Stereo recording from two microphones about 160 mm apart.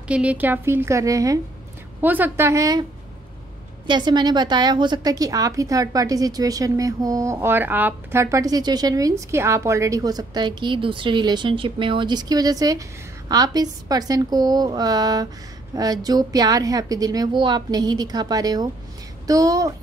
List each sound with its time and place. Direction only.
0.1 s a woman's voice: 10° right (ahead or behind)
3.8 s a woman's voice: 30° right (ahead or behind)